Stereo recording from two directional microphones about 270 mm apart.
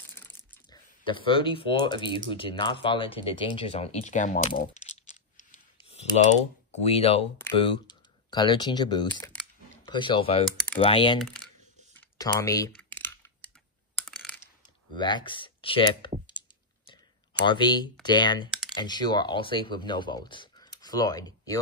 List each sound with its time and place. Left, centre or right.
0.7 s speech: centre
9.8 s speech: centre
11.1 s speech: centre
12.2 s typing: centre
13.9 s computer keyboard: centre
15.0 s speech: centre
16.8 s a sound: centre
18.0 s speech: centre
18.5 s computer keyboard: centre
18.8 s speech: centre